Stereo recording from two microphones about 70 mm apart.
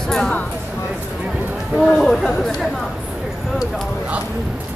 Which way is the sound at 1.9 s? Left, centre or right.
Centre.